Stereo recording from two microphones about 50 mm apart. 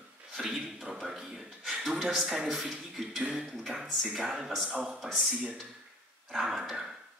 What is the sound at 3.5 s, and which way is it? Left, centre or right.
Speech, centre.